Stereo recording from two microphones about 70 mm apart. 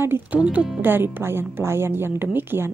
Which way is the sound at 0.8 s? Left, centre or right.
Right.